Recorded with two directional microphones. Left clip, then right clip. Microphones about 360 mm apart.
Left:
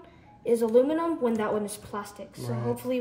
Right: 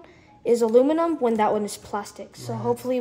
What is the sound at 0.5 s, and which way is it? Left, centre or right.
A woman's voice, right.